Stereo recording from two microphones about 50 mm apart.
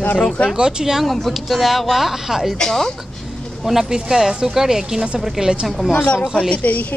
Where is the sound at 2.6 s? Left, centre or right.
Centre.